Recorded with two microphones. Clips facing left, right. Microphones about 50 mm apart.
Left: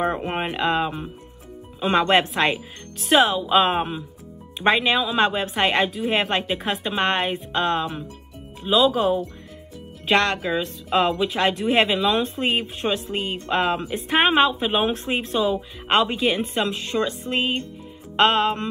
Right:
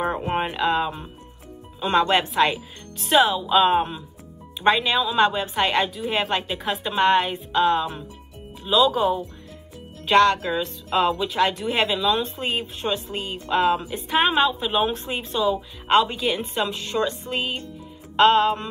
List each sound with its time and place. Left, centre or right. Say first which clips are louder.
0.1 s a sound: right 1 dB; centre
1.9 s speech: left 1 dB; left; by 4.0 s centre
4.6 s speech: even; left